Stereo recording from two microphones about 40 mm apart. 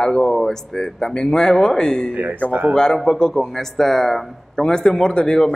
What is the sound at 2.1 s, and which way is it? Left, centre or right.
Speech, right.